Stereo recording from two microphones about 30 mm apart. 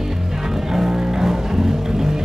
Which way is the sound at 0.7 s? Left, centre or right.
Centre.